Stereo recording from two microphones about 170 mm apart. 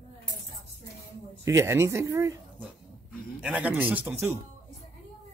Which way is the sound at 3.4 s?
10° right (ahead or behind).